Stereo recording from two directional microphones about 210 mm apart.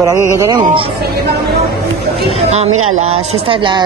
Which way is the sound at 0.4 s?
20° right (ahead or behind).